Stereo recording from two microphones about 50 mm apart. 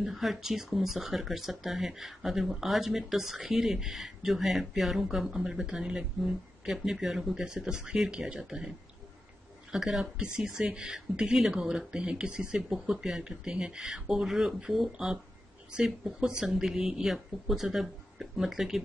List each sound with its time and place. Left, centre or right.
0.0 s speech: centre
16.3 s speech: centre